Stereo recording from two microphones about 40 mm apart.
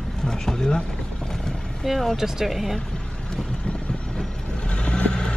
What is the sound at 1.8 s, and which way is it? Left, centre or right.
Speech, centre.